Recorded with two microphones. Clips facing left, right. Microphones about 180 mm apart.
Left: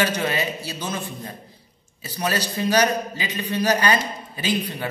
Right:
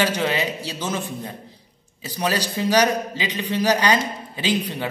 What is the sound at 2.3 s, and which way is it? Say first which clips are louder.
A man's voice: right 1 dB; 15° right (ahead or behind).